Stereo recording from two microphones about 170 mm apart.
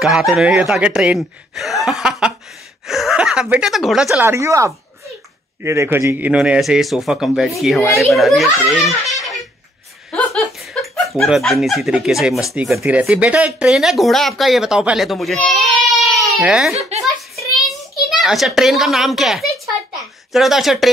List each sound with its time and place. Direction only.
0.0 s speech: centre (ahead or behind)
4.3 s speech: 15° right (ahead or behind); by 9.1 s centre (ahead or behind)
10.1 s chuckle: 5° left (ahead or behind)
11.1 s a child's voice: centre (ahead or behind)